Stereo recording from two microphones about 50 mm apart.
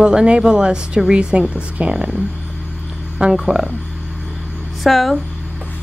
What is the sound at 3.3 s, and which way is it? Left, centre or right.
Speech, centre.